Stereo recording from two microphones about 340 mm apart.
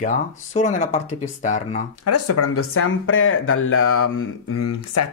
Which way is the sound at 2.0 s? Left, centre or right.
Left.